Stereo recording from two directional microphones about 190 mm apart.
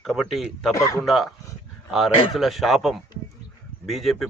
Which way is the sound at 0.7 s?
15° left (ahead or behind).